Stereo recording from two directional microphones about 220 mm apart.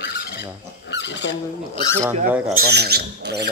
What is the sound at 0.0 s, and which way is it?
Goose, 45° left (ahead or behind).